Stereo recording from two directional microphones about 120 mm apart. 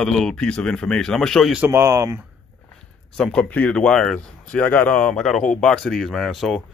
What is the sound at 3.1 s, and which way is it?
Speech, 5° left (ahead or behind).